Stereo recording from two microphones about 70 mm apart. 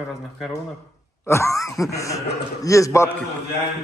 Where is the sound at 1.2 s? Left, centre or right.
Left.